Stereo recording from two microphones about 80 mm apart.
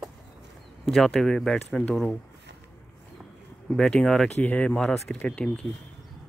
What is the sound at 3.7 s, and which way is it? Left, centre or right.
Speech, centre.